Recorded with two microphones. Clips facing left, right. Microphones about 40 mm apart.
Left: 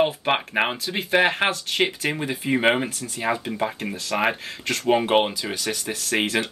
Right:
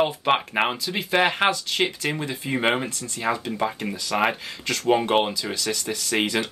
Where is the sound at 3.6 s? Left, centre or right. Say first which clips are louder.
Even; centre.